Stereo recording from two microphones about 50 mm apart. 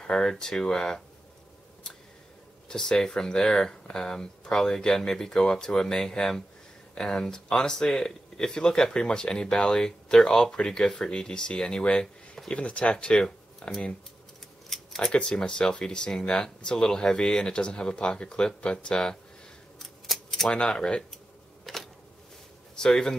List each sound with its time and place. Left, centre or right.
0.0 s speech: centre
2.7 s speech: centre
15.0 s speech: centre
19.8 s a sound: centre
20.5 s speech: centre
21.7 s a sound: centre
22.8 s speech: centre